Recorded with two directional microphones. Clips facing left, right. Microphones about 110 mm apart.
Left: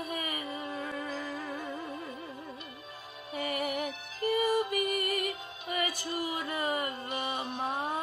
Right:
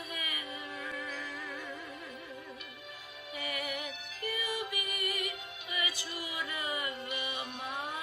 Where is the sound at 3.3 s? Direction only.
45° left (ahead or behind).